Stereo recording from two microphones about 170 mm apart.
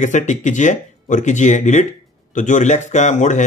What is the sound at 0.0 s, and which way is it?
Speech, 45° left (ahead or behind).